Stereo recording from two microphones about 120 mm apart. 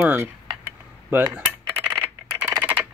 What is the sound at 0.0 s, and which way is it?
Speech, 15° right (ahead or behind).